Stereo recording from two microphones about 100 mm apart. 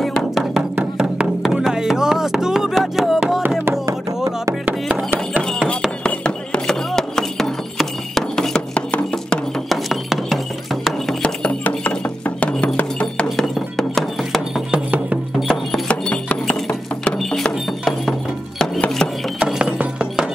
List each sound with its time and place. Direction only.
0.0 s music: 5° left (ahead or behind)
3.8 s a sound: 30° right (ahead or behind)
4.6 s music: 20° right (ahead or behind)
6.0 s music: 10° left (ahead or behind)
11.2 s a sound: 15° left (ahead or behind)
12.4 s music: 15° left (ahead or behind)
19.4 s music: 10° right (ahead or behind)